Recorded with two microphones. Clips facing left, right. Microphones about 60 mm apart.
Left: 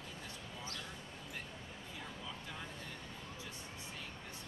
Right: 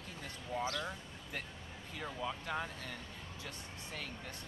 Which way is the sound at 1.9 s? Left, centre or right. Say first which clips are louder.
Right 9 dB; right.